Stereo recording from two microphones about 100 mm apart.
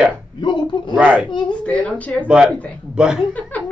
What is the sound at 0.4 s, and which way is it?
Speech, 50° left (ahead or behind).